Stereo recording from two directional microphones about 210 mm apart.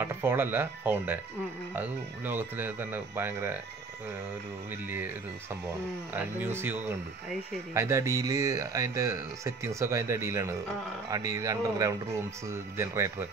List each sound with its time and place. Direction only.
0.0 s speech: 10° right (ahead or behind)
6.1 s speech: 10° right (ahead or behind)